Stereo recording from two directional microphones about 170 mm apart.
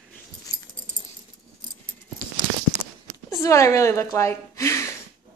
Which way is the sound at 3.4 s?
20° left (ahead or behind).